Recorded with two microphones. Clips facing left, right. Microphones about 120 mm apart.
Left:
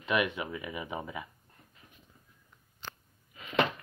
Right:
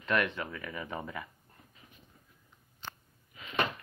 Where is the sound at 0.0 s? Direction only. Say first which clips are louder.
Left 1 dB; 10° left (ahead or behind).